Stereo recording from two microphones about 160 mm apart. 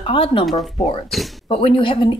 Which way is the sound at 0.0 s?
35° left (ahead or behind).